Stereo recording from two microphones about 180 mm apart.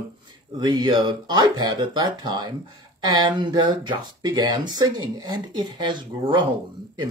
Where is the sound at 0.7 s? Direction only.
25° right (ahead or behind).